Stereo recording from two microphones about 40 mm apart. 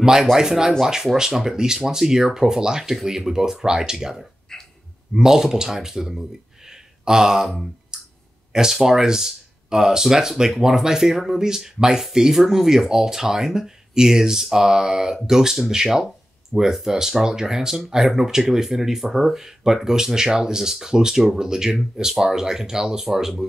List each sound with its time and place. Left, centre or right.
0.0 s speech: centre
4.5 s a sound: centre
5.1 s speech: centre
7.9 s clicking: centre
8.7 s speech: centre